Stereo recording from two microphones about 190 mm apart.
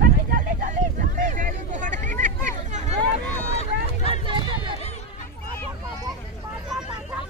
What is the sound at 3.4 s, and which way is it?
Vehicle, 35° left (ahead or behind).